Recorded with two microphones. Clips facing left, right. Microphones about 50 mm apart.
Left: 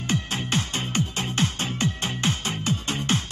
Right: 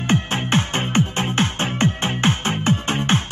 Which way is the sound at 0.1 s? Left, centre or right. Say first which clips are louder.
Right 6 dB; right.